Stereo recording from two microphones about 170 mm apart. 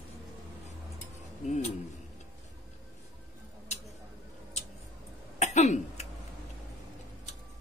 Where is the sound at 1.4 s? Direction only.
45° left (ahead or behind).